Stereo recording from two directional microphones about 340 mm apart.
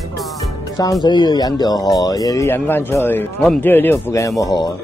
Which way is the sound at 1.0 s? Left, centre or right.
Centre.